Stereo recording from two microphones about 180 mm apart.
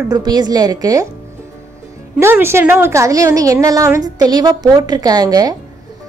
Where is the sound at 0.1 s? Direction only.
20° right (ahead or behind).